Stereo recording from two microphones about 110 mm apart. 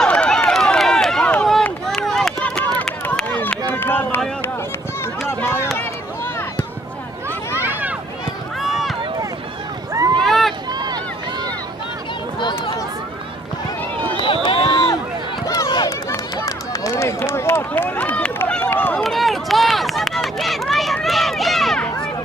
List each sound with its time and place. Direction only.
0.0 s run: 10° left (ahead or behind)
5.4 s a sound: 20° left (ahead or behind)
8.5 s run: centre (ahead or behind)
10.2 s run: centre (ahead or behind)
10.7 s run: 40° right (ahead or behind)
12.4 s a sound: 45° left (ahead or behind)
14.1 s run: 50° left (ahead or behind)
15.4 s a sound: 35° left (ahead or behind)
16.1 s run: 30° left (ahead or behind)
19.0 s run: centre (ahead or behind)